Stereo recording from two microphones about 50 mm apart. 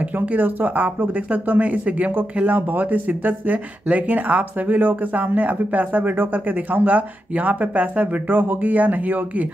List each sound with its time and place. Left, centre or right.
0.0 s speech: right